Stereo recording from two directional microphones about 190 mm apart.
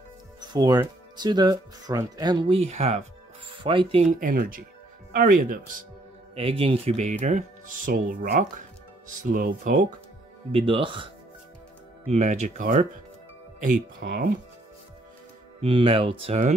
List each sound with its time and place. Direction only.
0.5 s speech: 20° right (ahead or behind)
4.2 s speech: 50° right (ahead or behind)
6.3 s speech: 30° right (ahead or behind); by 9.8 s 45° right (ahead or behind)
10.5 s speech: 25° right (ahead or behind)
12.1 s speech: 35° right (ahead or behind)
15.6 s speech: 30° right (ahead or behind)